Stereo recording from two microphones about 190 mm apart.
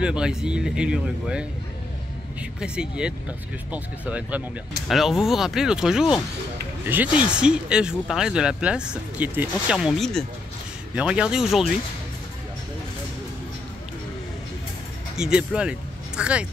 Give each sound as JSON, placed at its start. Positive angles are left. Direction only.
{"t": 0.0, "sound": "speech", "side_deg": -5}
{"t": 2.6, "sound": "speech", "side_deg": -5}
{"t": 15.1, "sound": "speech", "side_deg": -5}